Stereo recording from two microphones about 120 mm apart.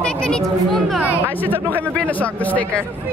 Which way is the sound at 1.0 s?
15° left (ahead or behind).